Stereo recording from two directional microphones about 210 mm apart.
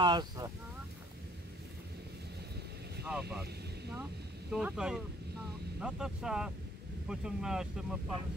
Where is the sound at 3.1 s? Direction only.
5° right (ahead or behind).